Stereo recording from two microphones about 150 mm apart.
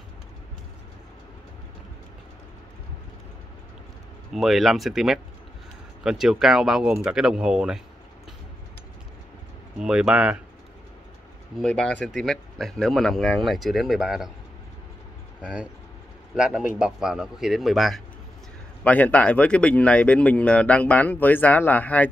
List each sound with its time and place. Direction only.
4.3 s speech: centre (ahead or behind)
9.8 s speech: 5° right (ahead or behind)
11.5 s speech: 5° left (ahead or behind)
15.4 s speech: 5° right (ahead or behind); by 22.1 s 10° left (ahead or behind)